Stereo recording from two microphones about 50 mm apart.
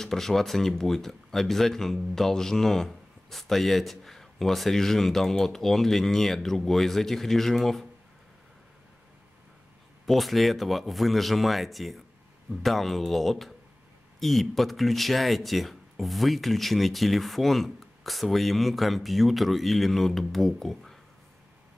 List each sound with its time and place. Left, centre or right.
0.0 s speech: centre
10.0 s speech: centre